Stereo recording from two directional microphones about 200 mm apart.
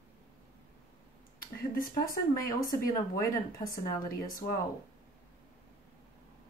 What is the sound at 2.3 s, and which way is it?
Speech, 45° left (ahead or behind).